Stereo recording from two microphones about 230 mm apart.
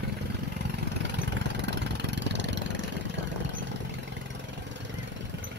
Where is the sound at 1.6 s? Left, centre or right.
Right.